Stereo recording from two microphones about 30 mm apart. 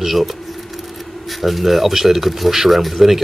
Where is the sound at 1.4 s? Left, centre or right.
Centre.